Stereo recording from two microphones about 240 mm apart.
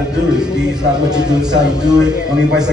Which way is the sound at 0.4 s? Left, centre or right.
Centre.